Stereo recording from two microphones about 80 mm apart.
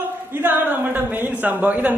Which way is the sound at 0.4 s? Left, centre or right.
Right.